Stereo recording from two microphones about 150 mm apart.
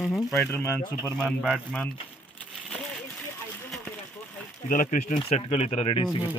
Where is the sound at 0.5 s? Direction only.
15° left (ahead or behind).